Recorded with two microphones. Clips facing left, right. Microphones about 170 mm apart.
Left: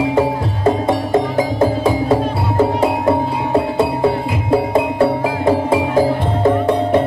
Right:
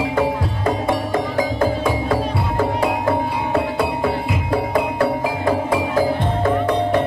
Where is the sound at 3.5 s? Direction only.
25° left (ahead or behind).